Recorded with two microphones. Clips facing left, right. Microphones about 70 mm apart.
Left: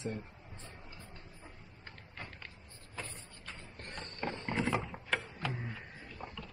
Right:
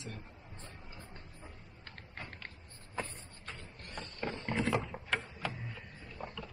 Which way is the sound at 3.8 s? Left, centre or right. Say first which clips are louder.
Left 2 dB; left.